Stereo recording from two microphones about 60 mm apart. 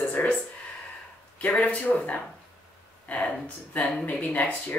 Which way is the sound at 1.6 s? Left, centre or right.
Left.